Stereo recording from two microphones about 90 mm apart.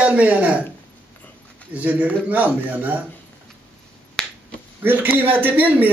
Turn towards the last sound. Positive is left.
turn(degrees=-20)  # may be behind; listen again after turning